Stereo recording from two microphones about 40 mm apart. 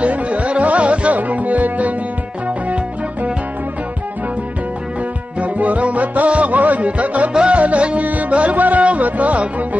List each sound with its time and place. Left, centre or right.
0.0 s music: right
5.4 s music: right